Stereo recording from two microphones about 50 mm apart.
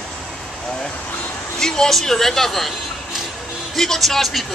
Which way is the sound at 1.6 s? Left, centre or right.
Centre.